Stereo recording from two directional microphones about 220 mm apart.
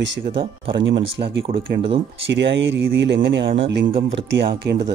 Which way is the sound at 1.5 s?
20° right (ahead or behind).